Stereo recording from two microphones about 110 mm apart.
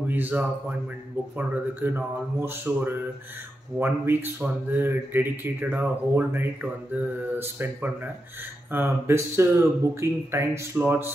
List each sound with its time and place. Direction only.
0.1 s speech: 15° right (ahead or behind)